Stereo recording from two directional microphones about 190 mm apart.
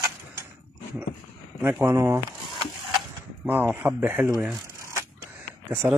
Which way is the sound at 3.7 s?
10° right (ahead or behind).